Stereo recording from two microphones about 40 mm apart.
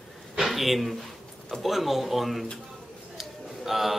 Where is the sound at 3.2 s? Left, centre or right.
Centre.